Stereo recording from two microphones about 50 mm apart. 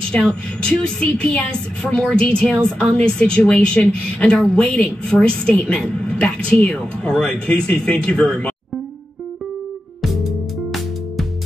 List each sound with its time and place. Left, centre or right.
0.3 s a woman's voice: left